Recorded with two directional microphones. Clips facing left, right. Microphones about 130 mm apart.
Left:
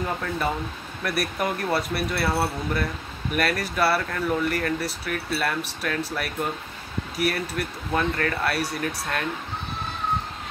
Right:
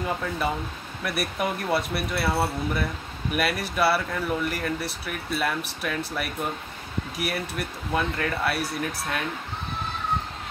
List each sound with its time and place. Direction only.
1.0 s speech: centre (ahead or behind)